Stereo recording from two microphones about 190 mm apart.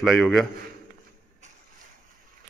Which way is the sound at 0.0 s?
Centre (ahead or behind).